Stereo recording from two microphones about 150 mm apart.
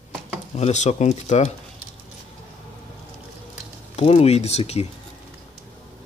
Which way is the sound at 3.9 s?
45° left (ahead or behind).